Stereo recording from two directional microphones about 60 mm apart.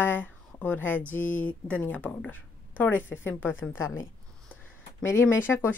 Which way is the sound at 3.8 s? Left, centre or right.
Left.